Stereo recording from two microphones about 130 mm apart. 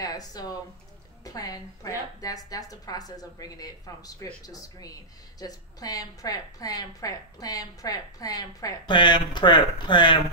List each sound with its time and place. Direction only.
0.0 s a woman's voice: 30° left (ahead or behind)